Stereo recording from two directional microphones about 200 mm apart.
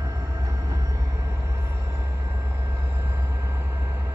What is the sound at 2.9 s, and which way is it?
Vehicle, 10° right (ahead or behind).